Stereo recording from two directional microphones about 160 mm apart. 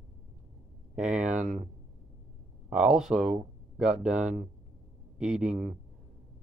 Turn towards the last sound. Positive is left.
turn(degrees=-5)  # may be behind; listen again after turning